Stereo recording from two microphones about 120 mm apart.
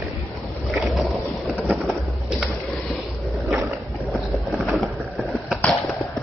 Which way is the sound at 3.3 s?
Centre (ahead or behind).